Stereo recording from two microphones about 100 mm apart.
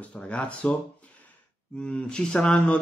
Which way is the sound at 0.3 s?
10° left (ahead or behind).